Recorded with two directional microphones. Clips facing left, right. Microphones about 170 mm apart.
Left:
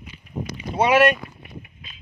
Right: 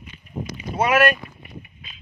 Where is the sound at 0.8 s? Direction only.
25° left (ahead or behind).